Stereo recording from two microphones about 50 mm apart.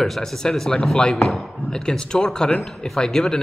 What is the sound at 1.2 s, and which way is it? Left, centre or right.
Chop, centre.